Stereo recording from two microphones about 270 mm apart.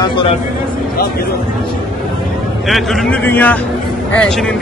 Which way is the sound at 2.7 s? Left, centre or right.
Centre.